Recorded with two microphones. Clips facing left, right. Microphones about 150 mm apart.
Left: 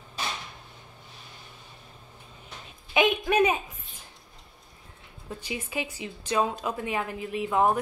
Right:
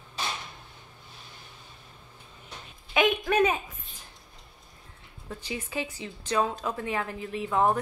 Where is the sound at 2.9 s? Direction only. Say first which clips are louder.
Left 1 dB; 20° left (ahead or behind).